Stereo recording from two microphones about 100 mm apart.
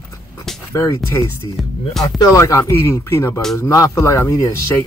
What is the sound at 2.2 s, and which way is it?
Speech, 35° left (ahead or behind).